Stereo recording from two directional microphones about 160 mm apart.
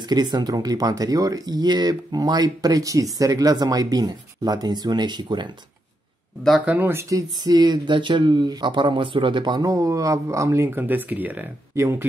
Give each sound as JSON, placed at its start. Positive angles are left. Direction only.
{"t": 0.1, "sound": "speech", "side_deg": -25}
{"t": 6.4, "sound": "speech", "side_deg": -5}